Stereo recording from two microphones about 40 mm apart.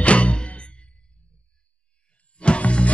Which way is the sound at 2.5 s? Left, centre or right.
Left.